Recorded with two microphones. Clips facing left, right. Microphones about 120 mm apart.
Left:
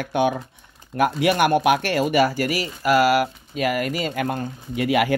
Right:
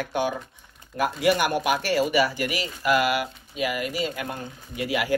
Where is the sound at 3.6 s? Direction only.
50° left (ahead or behind).